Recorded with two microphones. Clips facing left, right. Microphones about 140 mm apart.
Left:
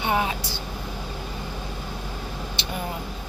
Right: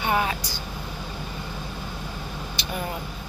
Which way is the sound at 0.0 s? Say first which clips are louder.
Even; 20° left (ahead or behind).